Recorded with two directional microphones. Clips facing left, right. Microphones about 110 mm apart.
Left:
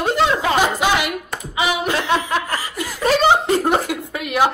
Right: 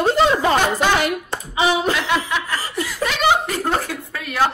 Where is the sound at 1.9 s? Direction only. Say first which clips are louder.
Left 2 dB; 40° left (ahead or behind).